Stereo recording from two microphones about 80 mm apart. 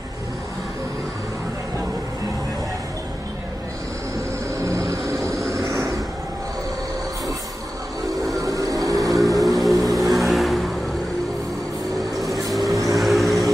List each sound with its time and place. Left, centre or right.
4.6 s vehicle: right
8.4 s vehicle: right
9.5 s music: right
10.1 s vehicle: centre
12.3 s vehicle: right
12.9 s vehicle: centre